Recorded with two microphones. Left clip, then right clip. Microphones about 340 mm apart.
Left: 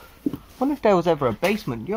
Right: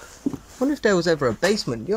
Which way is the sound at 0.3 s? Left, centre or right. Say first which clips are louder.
Even; right.